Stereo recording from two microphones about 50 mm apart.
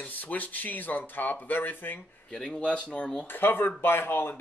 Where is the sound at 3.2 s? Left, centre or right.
Left.